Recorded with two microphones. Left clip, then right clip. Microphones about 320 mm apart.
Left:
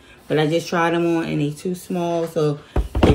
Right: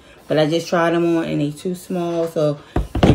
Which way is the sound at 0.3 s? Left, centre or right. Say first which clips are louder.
Right 2 dB; centre.